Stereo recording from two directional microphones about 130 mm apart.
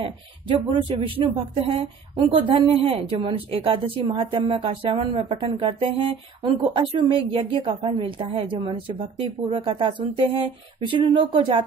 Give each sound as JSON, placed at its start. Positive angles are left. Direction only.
{"t": 0.0, "sound": "speech", "side_deg": -45}